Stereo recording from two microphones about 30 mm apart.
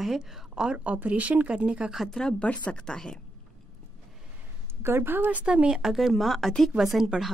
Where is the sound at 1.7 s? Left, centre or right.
Right.